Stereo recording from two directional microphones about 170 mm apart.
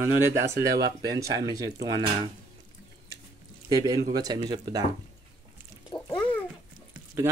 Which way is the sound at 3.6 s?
20° right (ahead or behind).